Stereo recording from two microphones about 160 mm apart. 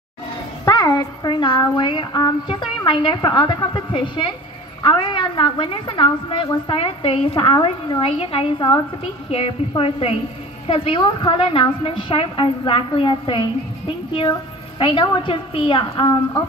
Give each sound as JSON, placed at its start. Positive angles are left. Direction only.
{"t": 0.7, "sound": "a woman's voice", "side_deg": 25}
{"t": 14.8, "sound": "a woman's voice", "side_deg": 30}